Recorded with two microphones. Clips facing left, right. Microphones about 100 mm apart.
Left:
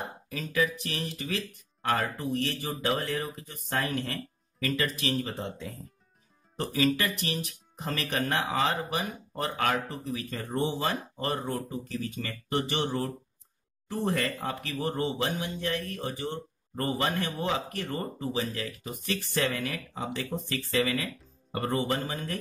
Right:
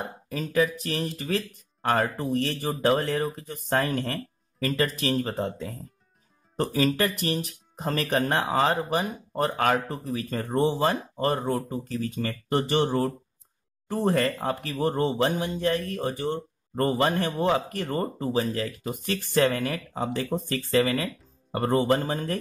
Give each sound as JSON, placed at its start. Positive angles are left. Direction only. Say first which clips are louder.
{"t": 0.3, "sound": "speech", "louder": "right 4 dB", "side_deg": -35}